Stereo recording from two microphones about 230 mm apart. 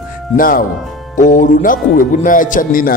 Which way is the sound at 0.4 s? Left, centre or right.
Left.